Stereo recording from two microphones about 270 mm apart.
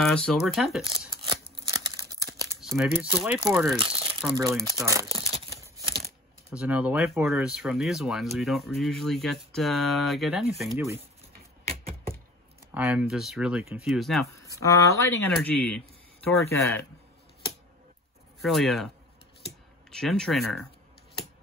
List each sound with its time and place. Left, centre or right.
0.0 s speech: centre
1.2 s scissors: centre
2.6 s speech: centre
3.7 s crumpling: centre
4.3 s speech: centre
5.1 s a sound: centre
6.5 s speech: centre
12.7 s speech: centre
14.2 s a sound: centre
14.6 s speech: centre
18.4 s speech: centre
19.9 s speech: centre